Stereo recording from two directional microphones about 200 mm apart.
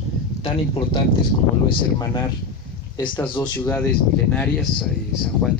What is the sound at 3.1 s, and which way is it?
Speech, 10° left (ahead or behind).